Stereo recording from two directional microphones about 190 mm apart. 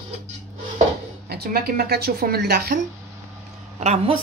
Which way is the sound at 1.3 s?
55° right (ahead or behind).